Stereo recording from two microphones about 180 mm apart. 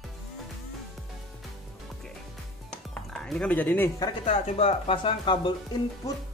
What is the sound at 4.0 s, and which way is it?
Speech, 30° left (ahead or behind).